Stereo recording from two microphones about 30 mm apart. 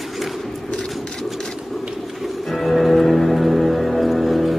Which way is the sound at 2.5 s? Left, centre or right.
Centre.